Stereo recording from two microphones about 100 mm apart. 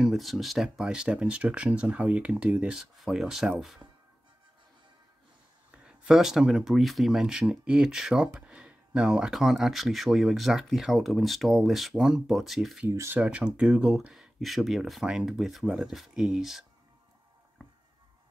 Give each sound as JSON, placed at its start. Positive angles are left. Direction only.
{"t": 0.0, "sound": "speech", "side_deg": 0}
{"t": 5.9, "sound": "speech", "side_deg": -5}
{"t": 12.9, "sound": "speech", "side_deg": -30}
{"t": 13.2, "sound": "speech", "side_deg": -10}